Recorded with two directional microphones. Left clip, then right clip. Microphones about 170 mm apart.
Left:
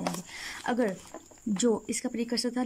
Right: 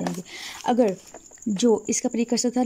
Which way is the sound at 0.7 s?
20° right (ahead or behind).